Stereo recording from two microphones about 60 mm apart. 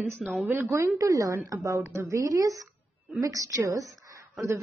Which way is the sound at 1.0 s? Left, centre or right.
Right.